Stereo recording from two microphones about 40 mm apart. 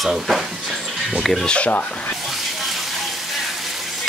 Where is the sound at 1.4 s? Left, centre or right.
Left.